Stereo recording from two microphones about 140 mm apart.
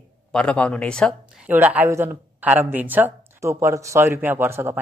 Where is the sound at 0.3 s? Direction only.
5° left (ahead or behind).